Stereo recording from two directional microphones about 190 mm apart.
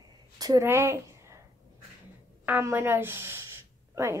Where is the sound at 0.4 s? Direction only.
15° right (ahead or behind).